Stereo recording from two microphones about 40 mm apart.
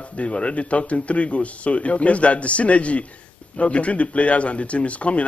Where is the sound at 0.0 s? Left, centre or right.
Left.